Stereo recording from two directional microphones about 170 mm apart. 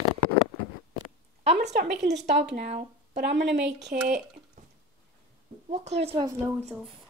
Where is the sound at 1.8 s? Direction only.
85° right.